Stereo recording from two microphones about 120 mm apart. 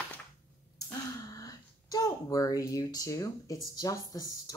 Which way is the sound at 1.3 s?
30° left (ahead or behind).